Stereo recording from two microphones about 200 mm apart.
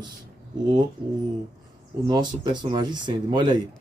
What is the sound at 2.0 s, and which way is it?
Speech, 20° right (ahead or behind).